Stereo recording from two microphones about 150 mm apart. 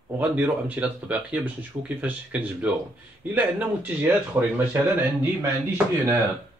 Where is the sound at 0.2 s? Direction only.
10° right (ahead or behind).